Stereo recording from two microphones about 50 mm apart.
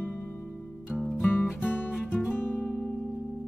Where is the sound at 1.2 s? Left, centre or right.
Left.